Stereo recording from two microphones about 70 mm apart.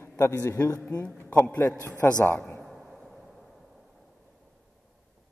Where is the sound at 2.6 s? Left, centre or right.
Centre.